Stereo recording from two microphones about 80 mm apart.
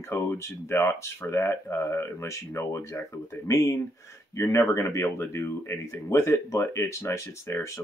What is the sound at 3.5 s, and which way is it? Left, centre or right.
Speech, left.